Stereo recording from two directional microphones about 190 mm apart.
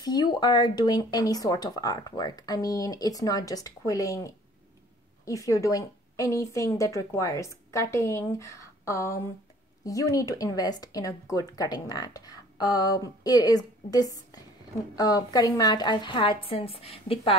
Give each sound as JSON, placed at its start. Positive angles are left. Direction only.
{"t": 0.0, "sound": "a woman's voice", "side_deg": 20}